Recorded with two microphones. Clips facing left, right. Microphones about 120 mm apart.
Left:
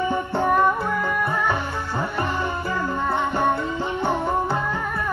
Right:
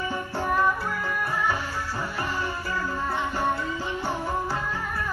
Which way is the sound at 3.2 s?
60° left (ahead or behind).